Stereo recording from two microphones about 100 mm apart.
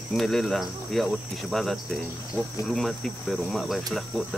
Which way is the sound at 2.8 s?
Centre (ahead or behind).